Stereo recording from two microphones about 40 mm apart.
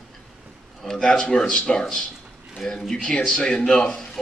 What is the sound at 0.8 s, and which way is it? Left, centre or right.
Speech, centre.